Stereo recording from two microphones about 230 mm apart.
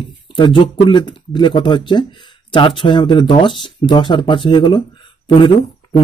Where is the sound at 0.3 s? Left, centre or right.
Left.